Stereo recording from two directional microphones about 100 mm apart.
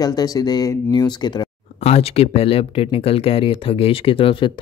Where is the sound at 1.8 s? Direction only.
90° left; by 4.5 s 60° left (ahead or behind).